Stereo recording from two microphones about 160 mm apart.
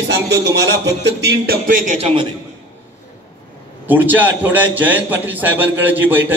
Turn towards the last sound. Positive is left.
turn(degrees=-10)  # may be behind; listen again after turning